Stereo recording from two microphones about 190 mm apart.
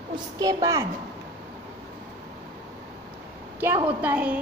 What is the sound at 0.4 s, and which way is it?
Speech, 20° right (ahead or behind).